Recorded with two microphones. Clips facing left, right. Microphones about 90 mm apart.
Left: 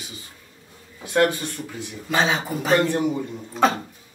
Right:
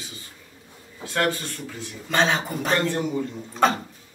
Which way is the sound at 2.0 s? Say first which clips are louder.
Even; 5° left (ahead or behind).